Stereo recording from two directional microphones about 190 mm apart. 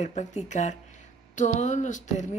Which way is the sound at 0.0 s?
35° left (ahead or behind).